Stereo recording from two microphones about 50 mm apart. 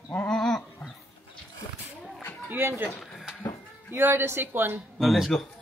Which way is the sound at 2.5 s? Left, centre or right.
Right.